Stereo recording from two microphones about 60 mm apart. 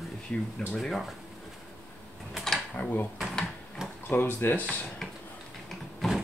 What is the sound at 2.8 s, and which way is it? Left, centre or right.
Speech, left.